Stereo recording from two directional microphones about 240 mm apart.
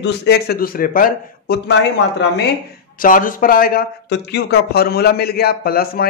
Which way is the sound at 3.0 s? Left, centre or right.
Left.